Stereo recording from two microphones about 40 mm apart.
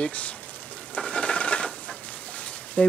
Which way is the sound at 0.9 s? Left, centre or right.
Left.